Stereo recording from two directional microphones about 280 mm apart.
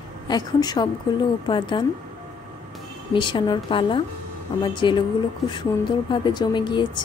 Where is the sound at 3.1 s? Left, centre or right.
Centre.